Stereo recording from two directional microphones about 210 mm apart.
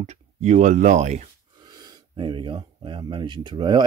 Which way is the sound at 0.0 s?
30° right (ahead or behind).